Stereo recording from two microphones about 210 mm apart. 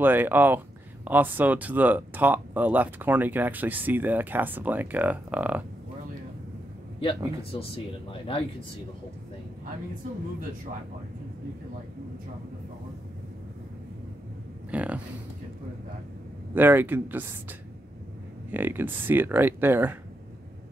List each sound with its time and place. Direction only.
0.0 s speech: 10° right (ahead or behind)
7.5 s speech: 25° left (ahead or behind)
14.7 s speech: 5° right (ahead or behind)
16.5 s speech: 10° right (ahead or behind)